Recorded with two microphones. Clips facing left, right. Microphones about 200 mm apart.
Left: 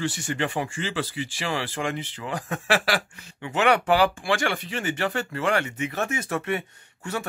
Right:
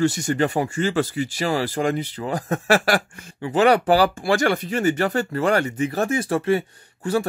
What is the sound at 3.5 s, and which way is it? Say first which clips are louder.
Speech: right 5 dB; 35° right (ahead or behind).